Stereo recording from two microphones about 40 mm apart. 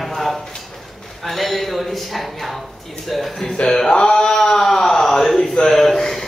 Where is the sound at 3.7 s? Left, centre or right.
Centre.